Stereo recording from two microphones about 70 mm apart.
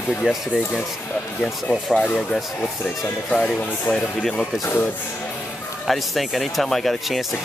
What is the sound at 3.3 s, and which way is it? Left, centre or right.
Speech, centre.